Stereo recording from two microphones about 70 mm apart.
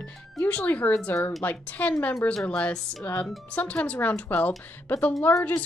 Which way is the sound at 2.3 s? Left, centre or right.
Centre.